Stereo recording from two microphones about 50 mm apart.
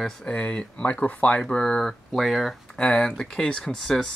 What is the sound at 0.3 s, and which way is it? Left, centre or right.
Speech, left.